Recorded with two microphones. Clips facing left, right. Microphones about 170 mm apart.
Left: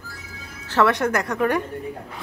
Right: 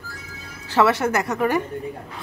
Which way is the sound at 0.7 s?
10° right (ahead or behind).